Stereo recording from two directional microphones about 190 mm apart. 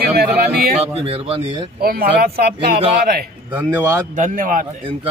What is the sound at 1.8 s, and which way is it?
Speech, 55° right (ahead or behind).